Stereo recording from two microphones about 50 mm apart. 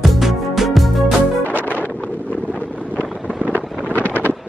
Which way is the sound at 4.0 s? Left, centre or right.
Left.